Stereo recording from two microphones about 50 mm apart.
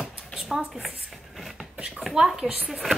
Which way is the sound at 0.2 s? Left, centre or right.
Centre.